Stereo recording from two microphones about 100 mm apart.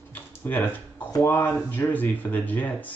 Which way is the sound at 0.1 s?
20° left (ahead or behind).